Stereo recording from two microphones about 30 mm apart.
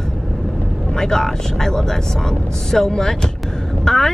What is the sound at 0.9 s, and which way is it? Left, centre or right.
Vehicle, centre.